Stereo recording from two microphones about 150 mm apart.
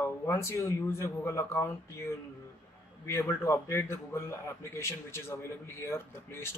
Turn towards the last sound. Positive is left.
turn(degrees=15)  # may be behind; listen again after turning